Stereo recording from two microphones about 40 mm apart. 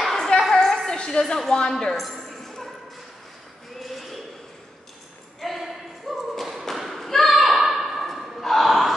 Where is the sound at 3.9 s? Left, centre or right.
Centre.